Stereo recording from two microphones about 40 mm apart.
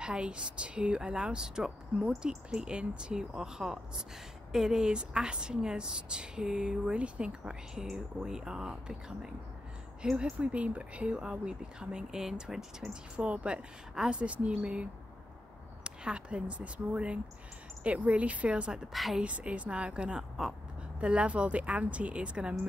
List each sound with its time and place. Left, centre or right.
0.0 s speech: right
13.1 s speech: right
18.9 s a woman's voice: centre
19.2 s speech: right